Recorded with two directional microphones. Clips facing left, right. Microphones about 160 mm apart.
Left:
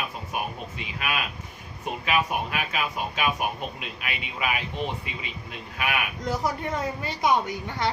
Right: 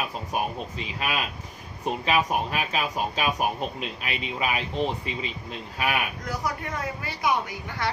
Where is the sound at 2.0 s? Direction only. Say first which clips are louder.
Right 1 dB; 35° right (ahead or behind).